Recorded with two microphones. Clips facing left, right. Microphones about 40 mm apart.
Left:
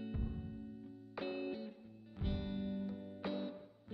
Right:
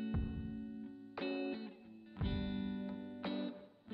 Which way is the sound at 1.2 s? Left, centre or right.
Right.